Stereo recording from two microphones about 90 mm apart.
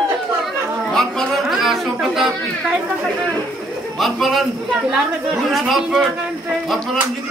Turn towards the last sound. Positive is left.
turn(degrees=0)  # may be behind; listen again after turning